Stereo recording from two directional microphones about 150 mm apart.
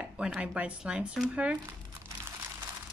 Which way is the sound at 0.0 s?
5° right (ahead or behind).